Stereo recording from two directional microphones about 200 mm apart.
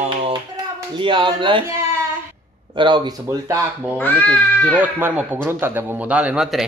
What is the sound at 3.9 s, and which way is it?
Speech, 10° left (ahead or behind).